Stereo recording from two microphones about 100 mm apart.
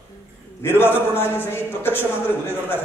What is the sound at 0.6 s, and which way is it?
A man's voice, 25° left (ahead or behind).